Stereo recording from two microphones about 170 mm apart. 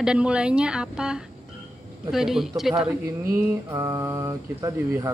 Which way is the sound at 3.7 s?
15° right (ahead or behind).